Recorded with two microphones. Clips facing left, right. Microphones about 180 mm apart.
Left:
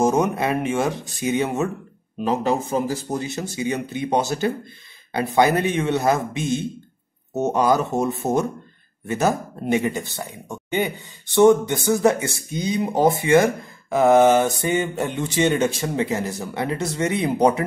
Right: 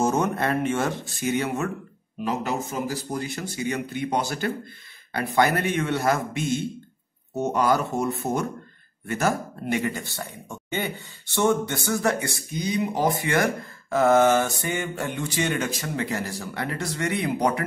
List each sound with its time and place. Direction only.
0.0 s speech: 15° left (ahead or behind)